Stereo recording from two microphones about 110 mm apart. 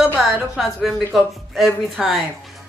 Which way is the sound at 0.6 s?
Centre (ahead or behind).